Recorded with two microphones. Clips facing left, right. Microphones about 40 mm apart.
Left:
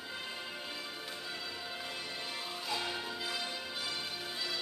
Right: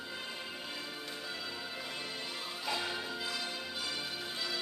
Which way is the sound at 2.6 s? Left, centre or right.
Centre.